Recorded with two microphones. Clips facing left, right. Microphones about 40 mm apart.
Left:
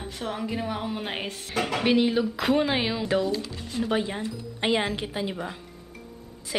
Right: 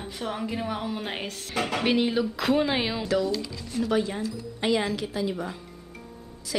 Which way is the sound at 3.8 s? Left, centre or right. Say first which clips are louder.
Right 1 dB; left.